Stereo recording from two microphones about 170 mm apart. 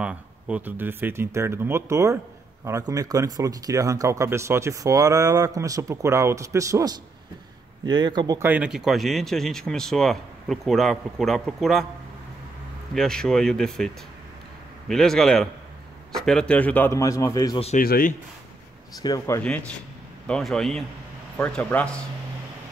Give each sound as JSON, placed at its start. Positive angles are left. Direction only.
{"t": 0.0, "sound": "speech", "side_deg": -5}
{"t": 8.4, "sound": "speech", "side_deg": -10}
{"t": 12.9, "sound": "a man's voice", "side_deg": 5}
{"t": 17.7, "sound": "speech", "side_deg": 55}
{"t": 18.9, "sound": "speech", "side_deg": 20}
{"t": 20.2, "sound": "a man's voice", "side_deg": 5}